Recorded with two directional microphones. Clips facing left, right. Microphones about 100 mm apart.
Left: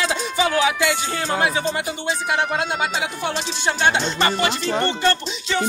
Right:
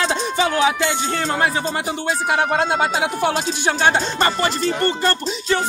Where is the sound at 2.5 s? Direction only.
40° right (ahead or behind).